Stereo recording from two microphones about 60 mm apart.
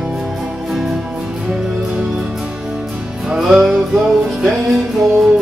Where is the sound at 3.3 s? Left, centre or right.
Centre.